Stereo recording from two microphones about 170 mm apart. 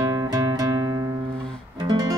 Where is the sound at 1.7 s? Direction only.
25° right (ahead or behind).